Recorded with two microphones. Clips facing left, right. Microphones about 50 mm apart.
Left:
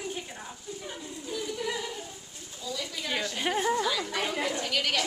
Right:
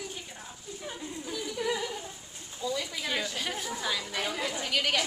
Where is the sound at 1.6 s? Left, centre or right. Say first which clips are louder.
Right 5 dB; centre.